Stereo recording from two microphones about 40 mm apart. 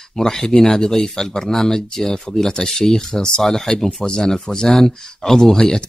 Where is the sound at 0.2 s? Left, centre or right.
Centre.